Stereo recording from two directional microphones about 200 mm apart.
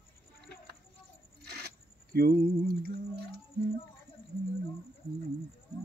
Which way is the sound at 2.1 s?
50° right (ahead or behind).